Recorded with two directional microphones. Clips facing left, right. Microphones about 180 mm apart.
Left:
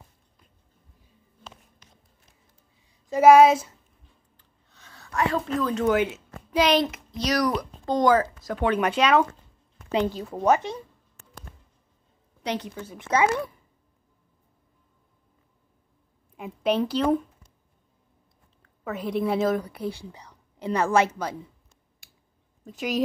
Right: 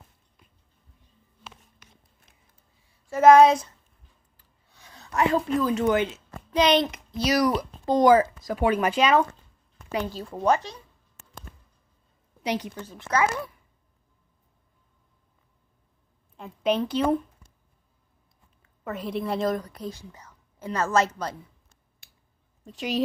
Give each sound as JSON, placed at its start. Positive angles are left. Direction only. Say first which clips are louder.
{"t": 2.9, "sound": "child singing", "louder": "left 1 dB", "side_deg": 15}
{"t": 4.4, "sound": "a sound", "louder": "right 2 dB", "side_deg": -10}
{"t": 5.6, "sound": "a child's voice", "louder": "left 3 dB", "side_deg": 0}
{"t": 9.8, "sound": "speech", "louder": "left 5 dB", "side_deg": 20}
{"t": 10.2, "sound": "a child's voice", "louder": "right 1 dB", "side_deg": 5}
{"t": 12.4, "sound": "speech", "louder": "right 1 dB", "side_deg": -10}
{"t": 12.7, "sound": "speech", "louder": "left 1 dB", "side_deg": 10}
{"t": 16.6, "sound": "a child's voice", "louder": "left 1 dB", "side_deg": 5}
{"t": 18.6, "sound": "a woman's voice", "louder": "left 1 dB", "side_deg": 0}
{"t": 22.7, "sound": "a child's voice", "louder": "left 1 dB", "side_deg": 0}